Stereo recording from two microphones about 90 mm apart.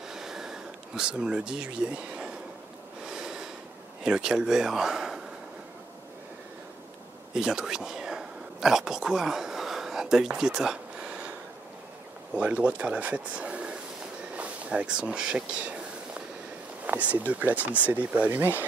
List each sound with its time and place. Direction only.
0.1 s a sound: 5° right (ahead or behind)
3.1 s snort: 5° right (ahead or behind)
4.0 s speech: 5° right (ahead or behind)
7.3 s a sound: 5° right (ahead or behind)
12.4 s speech: 15° right (ahead or behind)
16.8 s speech: 15° right (ahead or behind)